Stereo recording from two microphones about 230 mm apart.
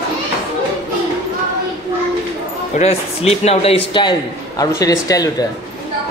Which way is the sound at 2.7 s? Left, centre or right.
Left.